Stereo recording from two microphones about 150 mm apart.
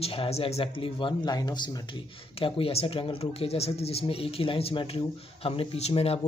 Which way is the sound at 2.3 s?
35° left (ahead or behind).